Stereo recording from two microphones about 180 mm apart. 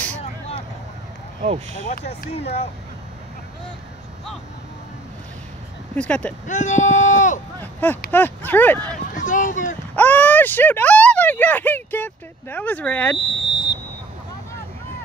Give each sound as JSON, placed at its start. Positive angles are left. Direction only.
{"t": 1.4, "sound": "speech", "side_deg": -40}
{"t": 1.9, "sound": "speech", "side_deg": 45}
{"t": 2.3, "sound": "speech", "side_deg": 35}
{"t": 5.9, "sound": "speech", "side_deg": 5}
{"t": 6.4, "sound": "speech", "side_deg": 40}
{"t": 7.6, "sound": "speech", "side_deg": 10}
{"t": 9.2, "sound": "speech", "side_deg": 45}
{"t": 9.9, "sound": "speech", "side_deg": 10}
{"t": 13.3, "sound": "squeal", "side_deg": 25}